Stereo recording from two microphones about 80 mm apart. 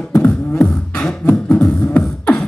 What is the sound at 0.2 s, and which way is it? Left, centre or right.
Beatboxing, left.